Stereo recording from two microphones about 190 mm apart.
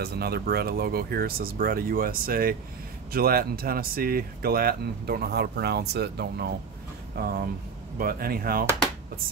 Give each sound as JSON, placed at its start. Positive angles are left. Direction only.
{"t": 0.0, "sound": "speech", "side_deg": -55}